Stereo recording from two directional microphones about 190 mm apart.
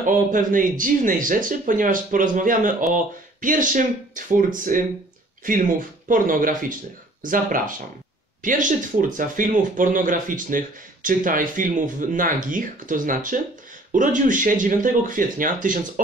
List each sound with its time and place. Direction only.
0.0 s speech: 45° right (ahead or behind)